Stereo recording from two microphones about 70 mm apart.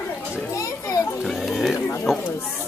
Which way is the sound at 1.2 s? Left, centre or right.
Centre.